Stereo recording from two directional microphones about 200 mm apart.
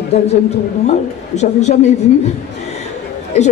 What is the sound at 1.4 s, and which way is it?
Speech, 35° left (ahead or behind).